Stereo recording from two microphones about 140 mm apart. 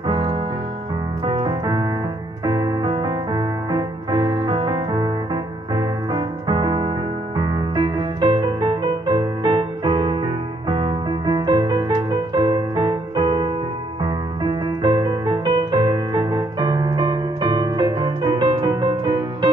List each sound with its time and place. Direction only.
0.0 s music: 35° right (ahead or behind)
2.4 s piano: 35° right (ahead or behind)
7.3 s music: 35° right (ahead or behind)